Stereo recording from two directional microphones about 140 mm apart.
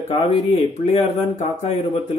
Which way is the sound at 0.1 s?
45° left (ahead or behind).